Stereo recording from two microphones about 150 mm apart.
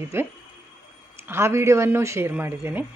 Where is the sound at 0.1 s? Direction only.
15° right (ahead or behind).